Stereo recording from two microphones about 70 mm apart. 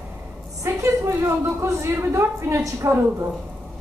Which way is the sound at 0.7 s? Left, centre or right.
Right.